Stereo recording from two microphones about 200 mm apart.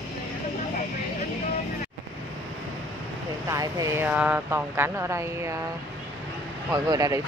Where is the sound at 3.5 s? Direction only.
15° right (ahead or behind).